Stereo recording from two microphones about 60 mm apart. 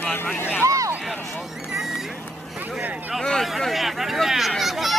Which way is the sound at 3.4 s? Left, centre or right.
Centre.